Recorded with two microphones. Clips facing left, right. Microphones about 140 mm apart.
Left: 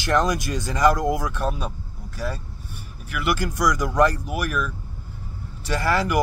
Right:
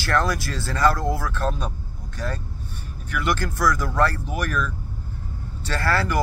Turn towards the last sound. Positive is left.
turn(degrees=15)  # may be behind; listen again after turning